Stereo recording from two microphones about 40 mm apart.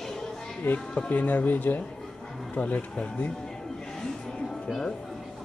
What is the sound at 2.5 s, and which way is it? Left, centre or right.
Speech, left.